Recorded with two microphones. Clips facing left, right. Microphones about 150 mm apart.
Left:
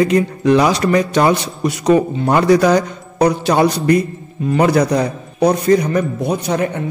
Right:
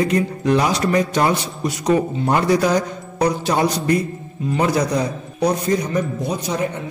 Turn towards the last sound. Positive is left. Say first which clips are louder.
# left 5 dB
turn(degrees=60)  # may be behind; listen again after turning